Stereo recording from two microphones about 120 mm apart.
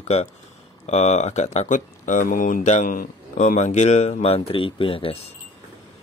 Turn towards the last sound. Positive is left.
turn(degrees=55)  # may be behind; listen again after turning